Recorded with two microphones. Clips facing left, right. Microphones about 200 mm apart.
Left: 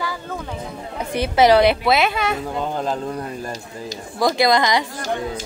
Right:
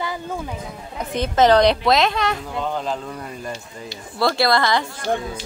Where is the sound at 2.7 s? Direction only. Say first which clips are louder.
Left 1 dB; 45° left (ahead or behind).